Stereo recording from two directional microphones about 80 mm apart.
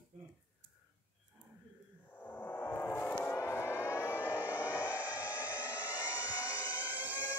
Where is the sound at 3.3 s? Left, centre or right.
Left.